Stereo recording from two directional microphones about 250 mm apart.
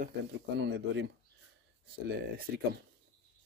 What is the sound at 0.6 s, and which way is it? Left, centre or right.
Speech, right.